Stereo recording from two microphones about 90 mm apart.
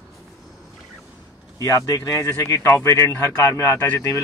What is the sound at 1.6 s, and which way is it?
A man's voice, 40° left (ahead or behind).